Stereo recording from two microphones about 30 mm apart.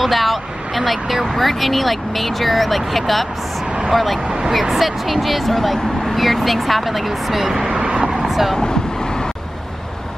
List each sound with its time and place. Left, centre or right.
0.0 s speech: centre
8.1 s vehicle: centre
8.5 s vehicle: left